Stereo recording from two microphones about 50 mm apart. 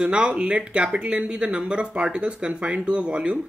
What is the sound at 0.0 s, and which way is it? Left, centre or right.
Speech, centre.